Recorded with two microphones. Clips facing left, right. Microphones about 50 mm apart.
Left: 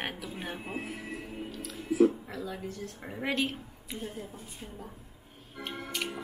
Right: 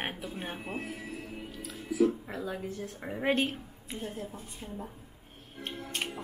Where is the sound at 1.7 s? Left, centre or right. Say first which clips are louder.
Left 3 dB; centre.